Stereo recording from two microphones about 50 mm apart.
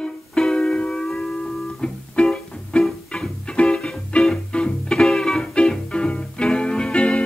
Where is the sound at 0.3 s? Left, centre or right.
Centre.